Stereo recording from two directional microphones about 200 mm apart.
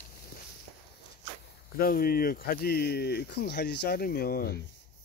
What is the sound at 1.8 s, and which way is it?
Speech, 45° left (ahead or behind).